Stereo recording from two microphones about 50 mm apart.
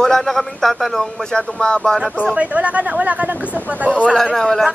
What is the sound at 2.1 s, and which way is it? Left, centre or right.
Speech, right.